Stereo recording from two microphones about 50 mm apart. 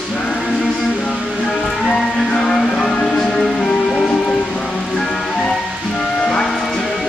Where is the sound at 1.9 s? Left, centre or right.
Centre.